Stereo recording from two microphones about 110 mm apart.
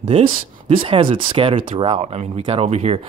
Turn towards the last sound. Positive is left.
turn(degrees=-70)  # may be behind; listen again after turning